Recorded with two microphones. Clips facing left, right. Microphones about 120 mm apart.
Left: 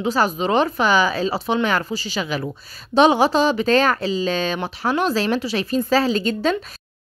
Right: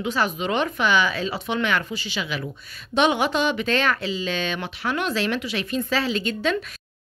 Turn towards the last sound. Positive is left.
turn(degrees=35)  # may be behind; listen again after turning